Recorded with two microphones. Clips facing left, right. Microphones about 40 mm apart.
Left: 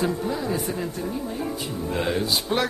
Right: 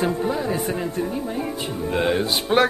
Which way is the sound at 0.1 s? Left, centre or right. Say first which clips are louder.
Right 3 dB; right.